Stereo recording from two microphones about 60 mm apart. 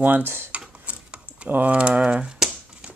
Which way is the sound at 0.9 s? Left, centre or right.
Right.